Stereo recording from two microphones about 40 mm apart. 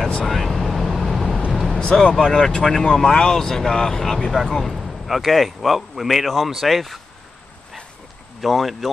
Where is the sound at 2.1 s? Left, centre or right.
Centre.